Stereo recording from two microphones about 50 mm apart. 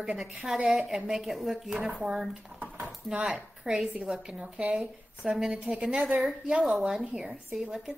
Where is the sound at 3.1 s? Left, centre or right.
Right.